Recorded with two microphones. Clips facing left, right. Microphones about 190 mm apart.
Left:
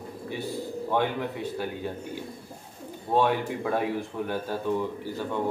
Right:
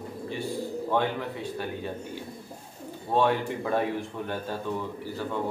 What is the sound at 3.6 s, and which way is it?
Speech, 5° left (ahead or behind).